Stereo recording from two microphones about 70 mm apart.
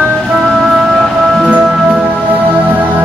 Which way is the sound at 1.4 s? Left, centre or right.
Centre.